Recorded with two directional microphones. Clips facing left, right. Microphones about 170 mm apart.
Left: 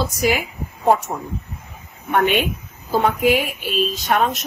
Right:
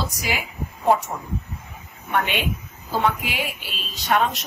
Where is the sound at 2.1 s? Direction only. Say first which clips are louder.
Left 6 dB; 50° left (ahead or behind).